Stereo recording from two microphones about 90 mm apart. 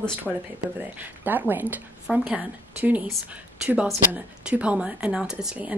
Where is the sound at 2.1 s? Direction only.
5° right (ahead or behind).